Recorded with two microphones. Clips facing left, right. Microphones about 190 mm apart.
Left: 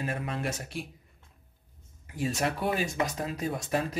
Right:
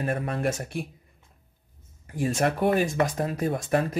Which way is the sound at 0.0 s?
55° right (ahead or behind).